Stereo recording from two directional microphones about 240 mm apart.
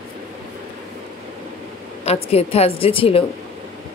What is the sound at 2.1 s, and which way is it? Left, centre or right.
Speech, left.